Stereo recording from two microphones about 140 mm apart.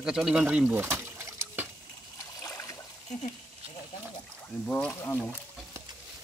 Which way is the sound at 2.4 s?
20° left (ahead or behind).